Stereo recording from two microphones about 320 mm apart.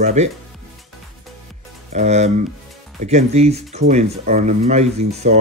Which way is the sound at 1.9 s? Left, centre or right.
Right.